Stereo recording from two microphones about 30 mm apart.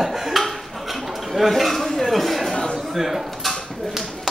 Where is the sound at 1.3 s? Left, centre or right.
Centre.